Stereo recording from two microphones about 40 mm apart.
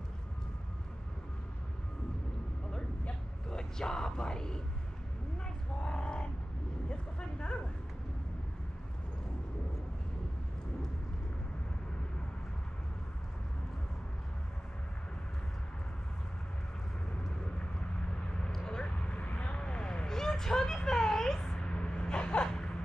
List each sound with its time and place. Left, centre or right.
3.4 s speech: centre
5.8 s a sound: left
17.6 s vehicle: left
18.5 s vehicle: centre
18.8 s vehicle: left
19.5 s a sound: left
21.6 s vehicle: left